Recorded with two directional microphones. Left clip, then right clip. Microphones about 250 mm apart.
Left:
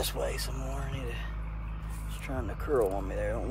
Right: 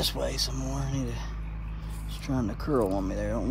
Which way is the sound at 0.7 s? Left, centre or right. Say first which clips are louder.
Right 4 dB; right.